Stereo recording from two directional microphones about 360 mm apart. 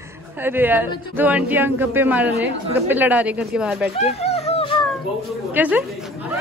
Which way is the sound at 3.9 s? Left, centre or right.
Centre.